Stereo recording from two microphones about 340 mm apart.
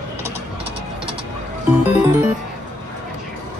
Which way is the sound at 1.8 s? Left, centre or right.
Centre.